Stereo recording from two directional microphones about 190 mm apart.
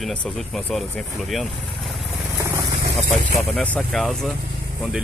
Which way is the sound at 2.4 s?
15° right (ahead or behind).